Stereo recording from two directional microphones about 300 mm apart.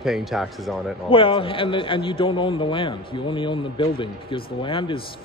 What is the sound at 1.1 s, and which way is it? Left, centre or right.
A man's voice, centre.